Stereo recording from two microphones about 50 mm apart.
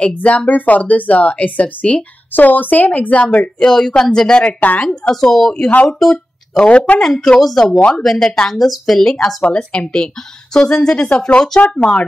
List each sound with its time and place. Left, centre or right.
0.1 s speech: left
3.6 s a woman's voice: centre; by 4.8 s left
5.1 s a woman's voice: centre
5.9 s a sound: centre
6.6 s speech: left
7.0 s a woman's voice: centre
7.6 s speech: left
7.9 s a woman's voice: centre
9.1 s a woman's voice: left